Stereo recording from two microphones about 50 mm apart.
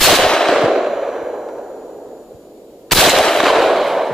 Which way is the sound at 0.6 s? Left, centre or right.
Centre.